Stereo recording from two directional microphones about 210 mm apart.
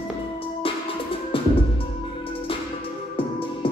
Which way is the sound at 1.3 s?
25° left (ahead or behind).